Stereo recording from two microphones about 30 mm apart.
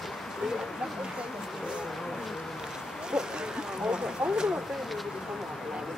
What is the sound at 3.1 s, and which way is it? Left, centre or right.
Speech, right.